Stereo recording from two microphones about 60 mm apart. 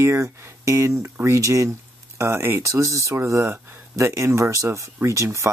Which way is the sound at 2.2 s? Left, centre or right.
Right.